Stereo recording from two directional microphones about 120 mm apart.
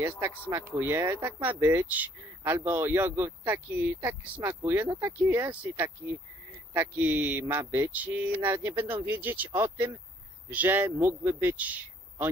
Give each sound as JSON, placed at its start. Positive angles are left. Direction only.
{"t": 0.5, "sound": "speech", "side_deg": -20}